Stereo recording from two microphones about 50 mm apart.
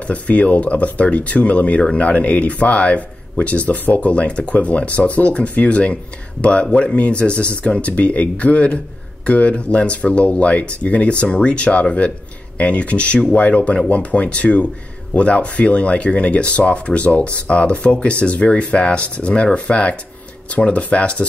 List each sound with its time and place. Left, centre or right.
0.0 s speech: left